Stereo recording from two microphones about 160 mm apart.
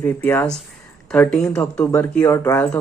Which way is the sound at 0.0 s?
15° left (ahead or behind).